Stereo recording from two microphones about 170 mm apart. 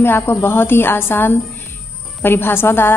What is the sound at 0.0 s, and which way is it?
A woman's voice, 15° left (ahead or behind).